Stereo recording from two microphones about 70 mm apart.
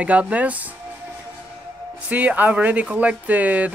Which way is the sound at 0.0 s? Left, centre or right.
Centre.